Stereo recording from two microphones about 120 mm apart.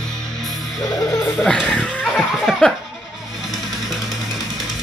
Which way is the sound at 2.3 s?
5° right (ahead or behind).